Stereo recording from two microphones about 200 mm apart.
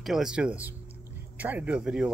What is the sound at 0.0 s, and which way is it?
Speech, centre (ahead or behind).